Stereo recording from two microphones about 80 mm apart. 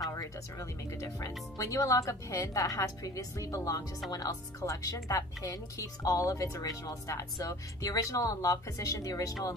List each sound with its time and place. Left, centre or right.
0.1 s speech: left